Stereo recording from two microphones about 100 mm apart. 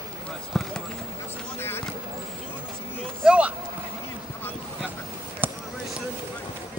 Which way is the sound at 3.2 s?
15° right (ahead or behind).